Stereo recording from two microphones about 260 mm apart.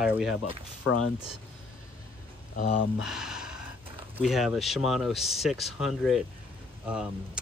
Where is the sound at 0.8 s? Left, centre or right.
Left.